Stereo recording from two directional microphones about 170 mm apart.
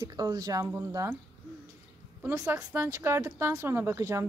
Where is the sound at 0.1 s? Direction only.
20° right (ahead or behind).